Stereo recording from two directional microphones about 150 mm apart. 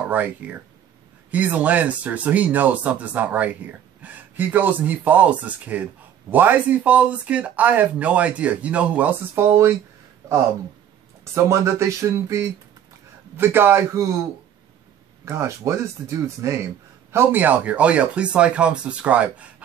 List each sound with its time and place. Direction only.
0.1 s speech: 10° right (ahead or behind)
11.3 s speech: 20° right (ahead or behind)
15.2 s speech: 20° right (ahead or behind)